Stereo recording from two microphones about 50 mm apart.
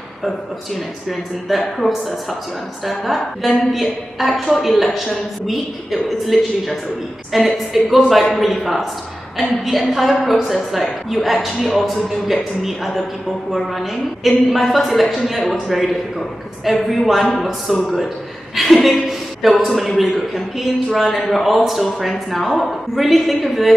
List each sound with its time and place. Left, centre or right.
1.8 s a man's voice: centre